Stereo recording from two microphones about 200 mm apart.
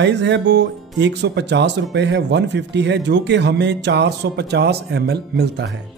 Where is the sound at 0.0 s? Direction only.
60° right (ahead or behind).